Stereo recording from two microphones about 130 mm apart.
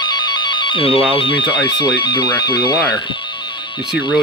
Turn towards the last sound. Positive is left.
turn(degrees=35)  # may be behind; listen again after turning